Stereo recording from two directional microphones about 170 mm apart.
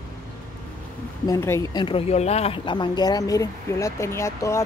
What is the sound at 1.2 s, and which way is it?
Speech, 15° left (ahead or behind).